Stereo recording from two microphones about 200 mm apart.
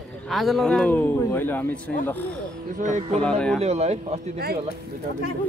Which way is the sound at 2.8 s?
40° right (ahead or behind).